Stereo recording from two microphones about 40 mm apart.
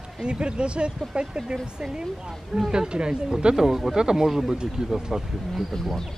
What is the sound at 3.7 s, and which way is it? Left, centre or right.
Speech, centre.